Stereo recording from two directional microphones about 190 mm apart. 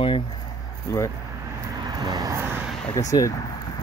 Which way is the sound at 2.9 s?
15° left (ahead or behind).